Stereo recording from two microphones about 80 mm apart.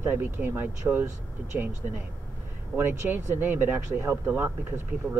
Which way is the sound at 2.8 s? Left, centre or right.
Right.